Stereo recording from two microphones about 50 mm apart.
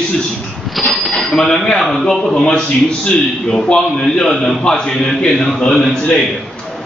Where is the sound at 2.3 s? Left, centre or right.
Centre.